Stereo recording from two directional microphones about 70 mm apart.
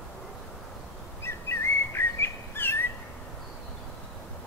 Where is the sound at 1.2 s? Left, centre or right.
Left.